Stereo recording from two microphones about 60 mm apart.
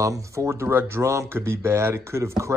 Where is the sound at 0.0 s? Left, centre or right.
Right.